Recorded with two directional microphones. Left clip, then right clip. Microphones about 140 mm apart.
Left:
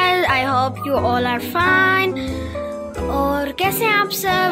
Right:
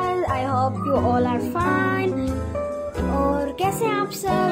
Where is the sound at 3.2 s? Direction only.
5° left (ahead or behind).